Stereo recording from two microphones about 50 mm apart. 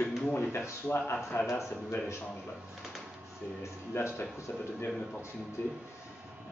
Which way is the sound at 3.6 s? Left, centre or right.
Left.